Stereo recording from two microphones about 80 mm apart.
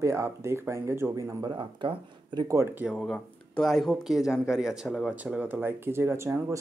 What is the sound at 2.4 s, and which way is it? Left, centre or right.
Speech, right.